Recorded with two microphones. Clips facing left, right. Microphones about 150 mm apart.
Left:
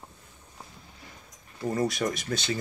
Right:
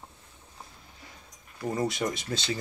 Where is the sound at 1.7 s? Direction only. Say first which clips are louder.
Left 2 dB; 25° right (ahead or behind).